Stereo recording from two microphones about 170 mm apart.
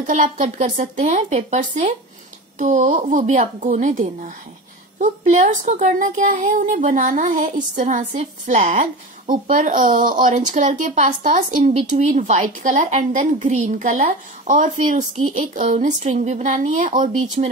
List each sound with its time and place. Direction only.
0.0 s speech: 50° right (ahead or behind)